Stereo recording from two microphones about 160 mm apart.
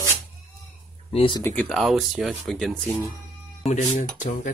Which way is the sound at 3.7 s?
45° left (ahead or behind).